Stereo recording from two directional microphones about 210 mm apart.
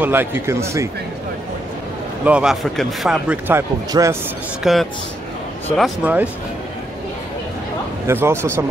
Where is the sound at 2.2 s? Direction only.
5° right (ahead or behind).